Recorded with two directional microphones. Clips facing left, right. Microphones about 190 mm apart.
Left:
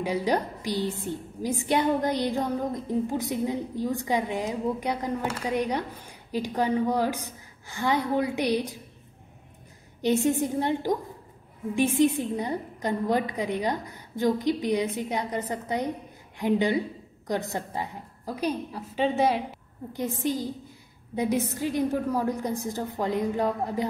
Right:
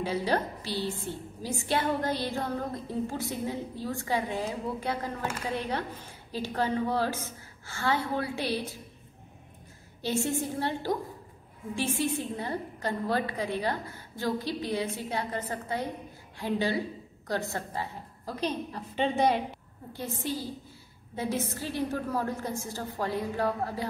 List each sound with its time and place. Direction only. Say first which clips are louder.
0.0 s a woman's voice: left 3 dB; 15° left (ahead or behind)
10.0 s a woman's voice: left 6 dB; 20° left (ahead or behind); by 19.4 s 5° left (ahead or behind)
19.9 s a woman's voice: left 6 dB; 15° left (ahead or behind)